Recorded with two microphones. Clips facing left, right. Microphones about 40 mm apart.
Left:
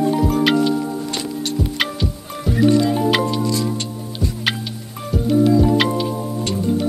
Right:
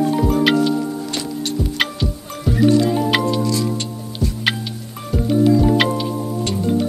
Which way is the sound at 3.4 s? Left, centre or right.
Left.